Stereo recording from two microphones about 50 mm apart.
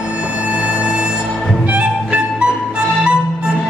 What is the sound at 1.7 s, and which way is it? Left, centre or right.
Music, right.